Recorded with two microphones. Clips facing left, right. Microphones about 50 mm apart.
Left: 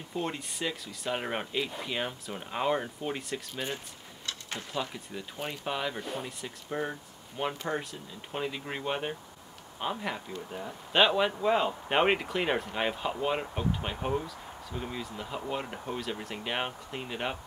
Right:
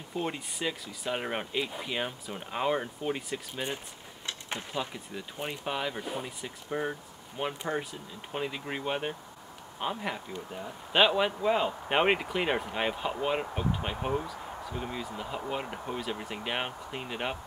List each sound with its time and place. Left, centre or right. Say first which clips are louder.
0.1 s speech: even; centre
4.3 s a sound: right 1 dB; right
4.7 s speech: left 2 dB; centre